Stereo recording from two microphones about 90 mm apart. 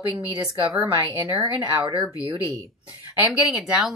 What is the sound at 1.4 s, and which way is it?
Speech, 60° right (ahead or behind).